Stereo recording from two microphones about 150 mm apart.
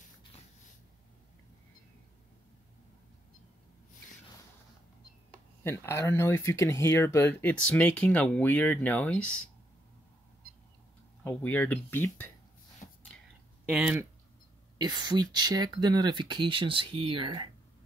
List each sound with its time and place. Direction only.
5.6 s speech: 15° left (ahead or behind)
11.2 s speech: 10° left (ahead or behind)
12.8 s a sound: 50° left (ahead or behind)
13.7 s speech: 10° right (ahead or behind)
14.8 s speech: 30° right (ahead or behind)